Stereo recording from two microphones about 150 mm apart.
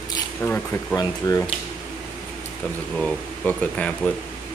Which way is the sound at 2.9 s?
5° left (ahead or behind).